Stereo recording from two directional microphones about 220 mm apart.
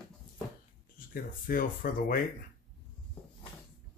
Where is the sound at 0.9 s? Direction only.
40° left (ahead or behind).